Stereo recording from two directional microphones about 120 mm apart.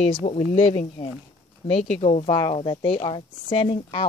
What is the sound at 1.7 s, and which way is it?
Speech, 60° left (ahead or behind).